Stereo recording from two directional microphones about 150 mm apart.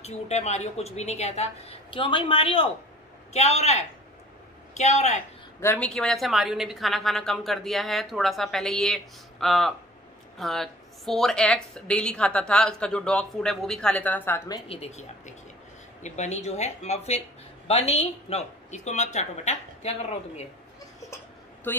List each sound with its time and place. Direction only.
0.0 s speech: 45° left (ahead or behind)
3.3 s speech: 45° left (ahead or behind)
5.6 s a woman's voice: 10° left (ahead or behind)
14.7 s speech: 45° left (ahead or behind)
21.7 s a woman's voice: 15° left (ahead or behind)